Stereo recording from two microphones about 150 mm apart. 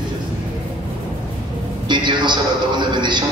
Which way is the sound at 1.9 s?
30° right (ahead or behind).